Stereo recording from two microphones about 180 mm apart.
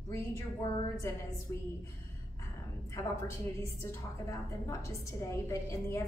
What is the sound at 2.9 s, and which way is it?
A woman's voice, 15° left (ahead or behind).